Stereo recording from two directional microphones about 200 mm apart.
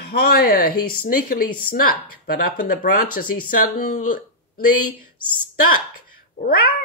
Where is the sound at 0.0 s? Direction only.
50° left (ahead or behind).